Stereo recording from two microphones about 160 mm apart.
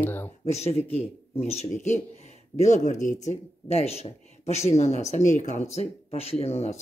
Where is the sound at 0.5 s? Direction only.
40° left (ahead or behind).